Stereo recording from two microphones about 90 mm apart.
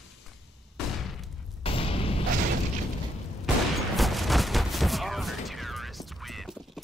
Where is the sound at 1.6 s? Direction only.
90° left.